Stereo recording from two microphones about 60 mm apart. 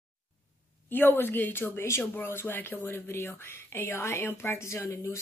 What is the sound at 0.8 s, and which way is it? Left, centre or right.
Speech, left.